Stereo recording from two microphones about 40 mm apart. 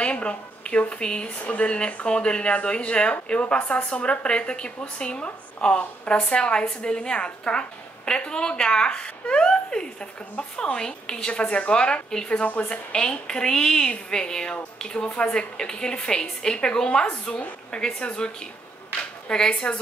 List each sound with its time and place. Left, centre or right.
0.0 s a woman's voice: left
12.9 s speech: left
19.3 s speech: centre